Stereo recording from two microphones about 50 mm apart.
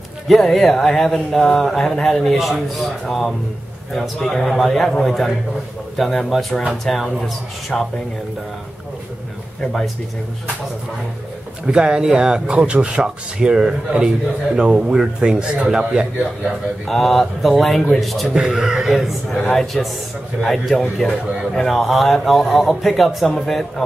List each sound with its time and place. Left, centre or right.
0.3 s speech: centre
9.6 s speech: centre
11.6 s speech: centre
16.8 s speech: centre
18.3 s speech: centre